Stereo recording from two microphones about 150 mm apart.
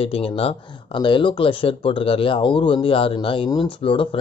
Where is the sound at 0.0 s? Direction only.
40° left (ahead or behind).